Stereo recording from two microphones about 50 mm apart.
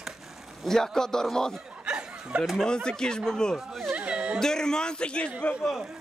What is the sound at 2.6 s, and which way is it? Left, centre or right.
Speech, centre.